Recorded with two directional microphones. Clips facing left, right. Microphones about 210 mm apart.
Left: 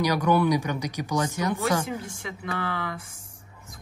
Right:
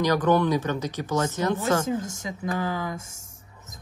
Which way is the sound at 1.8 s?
45° right (ahead or behind).